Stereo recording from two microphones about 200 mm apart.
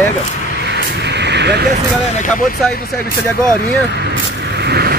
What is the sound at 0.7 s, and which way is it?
Vehicle, 60° right (ahead or behind).